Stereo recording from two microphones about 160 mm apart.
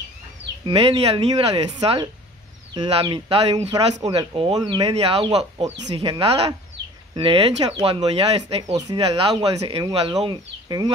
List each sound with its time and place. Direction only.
0.7 s speech: 35° right (ahead or behind)
3.5 s speech: 25° right (ahead or behind)
4.8 s speech: 40° right (ahead or behind)
8.7 s speech: 25° right (ahead or behind)
9.0 s speech: 35° right (ahead or behind)